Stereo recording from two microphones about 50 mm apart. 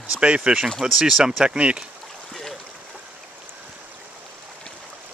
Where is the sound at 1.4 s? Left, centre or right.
Right.